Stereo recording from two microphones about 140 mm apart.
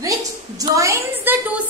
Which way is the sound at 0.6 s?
20° right (ahead or behind).